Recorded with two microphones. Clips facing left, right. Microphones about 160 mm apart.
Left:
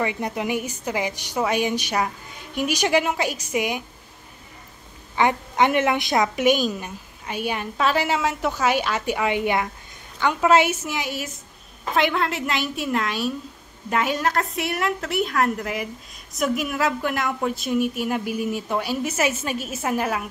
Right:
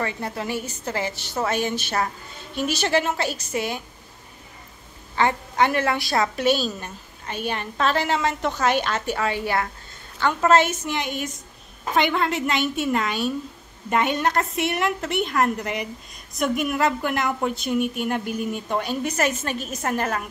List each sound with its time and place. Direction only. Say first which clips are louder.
0.0 s a woman's voice: left 3 dB; 15° left (ahead or behind)
5.1 s a woman's voice: left 1 dB; 15° left (ahead or behind)